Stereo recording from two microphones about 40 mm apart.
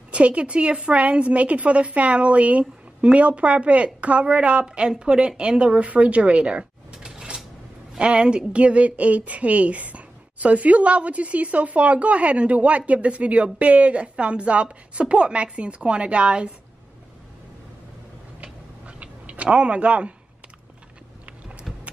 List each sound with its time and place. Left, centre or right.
0.1 s a woman's voice: right
18.4 s tick-tock: right
21.7 s clip-clop: centre